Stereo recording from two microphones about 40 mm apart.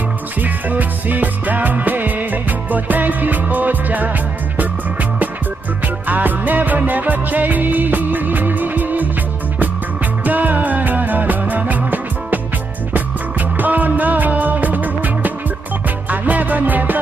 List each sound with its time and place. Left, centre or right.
0.4 s music: right
6.0 s music: right
10.2 s music: right
12.9 s music: right